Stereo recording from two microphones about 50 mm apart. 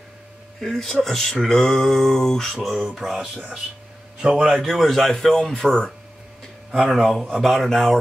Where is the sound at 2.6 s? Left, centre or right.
Centre.